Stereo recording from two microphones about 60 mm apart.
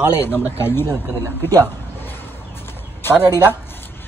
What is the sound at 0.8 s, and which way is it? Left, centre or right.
Speech, right.